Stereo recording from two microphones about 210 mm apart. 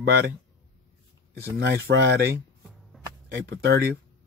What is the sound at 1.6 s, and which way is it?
Speech, 50° right (ahead or behind).